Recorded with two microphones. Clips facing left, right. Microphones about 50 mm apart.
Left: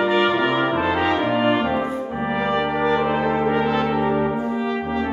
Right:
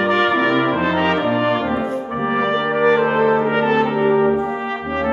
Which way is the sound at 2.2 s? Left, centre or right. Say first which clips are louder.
Right 3 dB; right.